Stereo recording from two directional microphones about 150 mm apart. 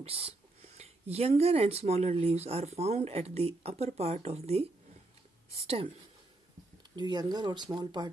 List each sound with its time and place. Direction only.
0.0 s speech: 40° right (ahead or behind)
7.0 s speech: 30° right (ahead or behind)